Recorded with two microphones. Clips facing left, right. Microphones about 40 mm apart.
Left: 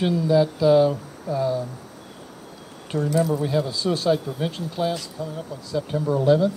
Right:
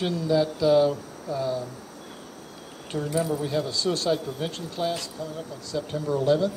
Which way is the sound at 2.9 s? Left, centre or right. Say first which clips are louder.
Left 4 dB; centre.